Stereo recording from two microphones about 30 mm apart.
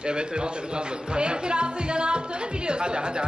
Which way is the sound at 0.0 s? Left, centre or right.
Right.